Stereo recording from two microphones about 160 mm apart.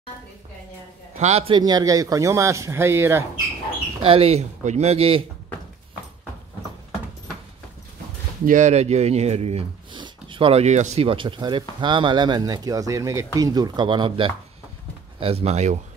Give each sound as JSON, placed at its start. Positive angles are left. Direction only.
{"t": 1.2, "sound": "speech", "side_deg": -40}
{"t": 1.6, "sound": "speech", "side_deg": -25}
{"t": 4.0, "sound": "speech", "side_deg": -35}
{"t": 8.5, "sound": "speech", "side_deg": -50}